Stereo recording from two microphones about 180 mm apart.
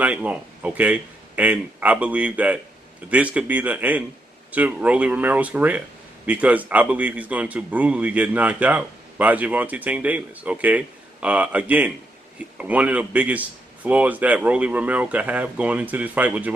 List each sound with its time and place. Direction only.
0.0 s speech: 10° right (ahead or behind)